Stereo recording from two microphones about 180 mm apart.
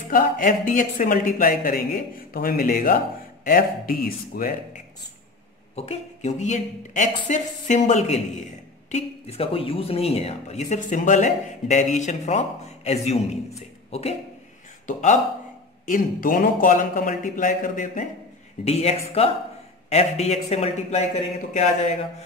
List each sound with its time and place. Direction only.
0.1 s speech: 45° left (ahead or behind)
5.8 s speech: 40° left (ahead or behind)
18.6 s speech: 35° left (ahead or behind)